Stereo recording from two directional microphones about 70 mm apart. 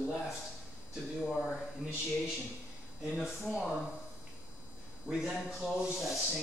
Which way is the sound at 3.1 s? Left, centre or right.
Centre.